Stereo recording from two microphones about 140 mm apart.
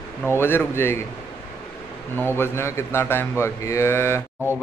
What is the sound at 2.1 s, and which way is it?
Speech, 15° left (ahead or behind).